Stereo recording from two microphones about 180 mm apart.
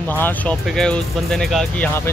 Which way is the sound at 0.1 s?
10° left (ahead or behind).